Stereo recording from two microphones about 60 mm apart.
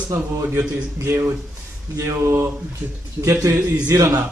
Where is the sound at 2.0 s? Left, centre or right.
Right.